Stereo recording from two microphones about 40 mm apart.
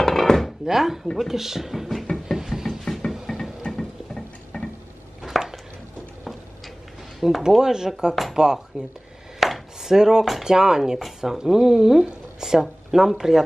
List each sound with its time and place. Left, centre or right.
0.0 s chopping: centre
0.7 s speech: centre
1.9 s knock: centre
2.8 s a sound: centre
3.1 s music: centre
5.2 s chopping: centre
7.2 s speech: centre
9.4 s chopping: centre
10.4 s speech: centre